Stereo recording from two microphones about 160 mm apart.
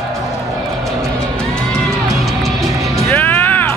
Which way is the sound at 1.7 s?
Centre (ahead or behind).